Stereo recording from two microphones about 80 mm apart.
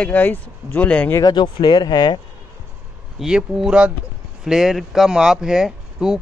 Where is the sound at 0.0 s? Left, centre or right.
Left.